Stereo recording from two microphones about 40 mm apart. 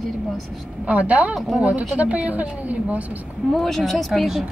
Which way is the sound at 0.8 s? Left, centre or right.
Right.